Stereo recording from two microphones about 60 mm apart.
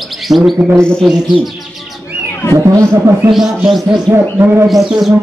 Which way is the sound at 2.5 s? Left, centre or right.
Right.